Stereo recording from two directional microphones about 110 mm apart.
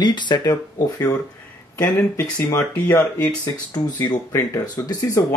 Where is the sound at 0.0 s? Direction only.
45° left (ahead or behind).